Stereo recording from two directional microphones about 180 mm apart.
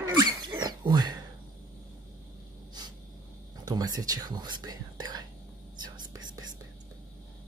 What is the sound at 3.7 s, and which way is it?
Speech, 20° right (ahead or behind).